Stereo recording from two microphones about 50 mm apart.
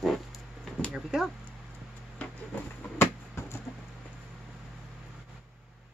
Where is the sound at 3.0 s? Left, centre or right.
Left.